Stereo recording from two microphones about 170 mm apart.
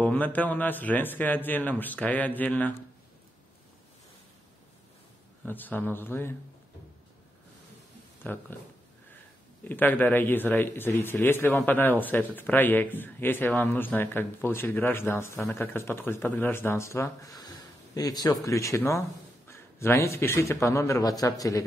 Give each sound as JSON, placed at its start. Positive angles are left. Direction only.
{"t": 0.0, "sound": "speech", "side_deg": 10}
{"t": 5.4, "sound": "speech", "side_deg": 10}
{"t": 8.2, "sound": "speech", "side_deg": 10}
{"t": 9.7, "sound": "a man's voice", "side_deg": 10}